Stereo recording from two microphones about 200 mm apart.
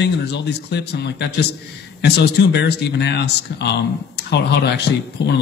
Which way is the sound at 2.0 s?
60° left (ahead or behind).